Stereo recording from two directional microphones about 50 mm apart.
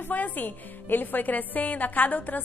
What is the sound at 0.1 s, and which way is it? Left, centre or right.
A woman's voice, left.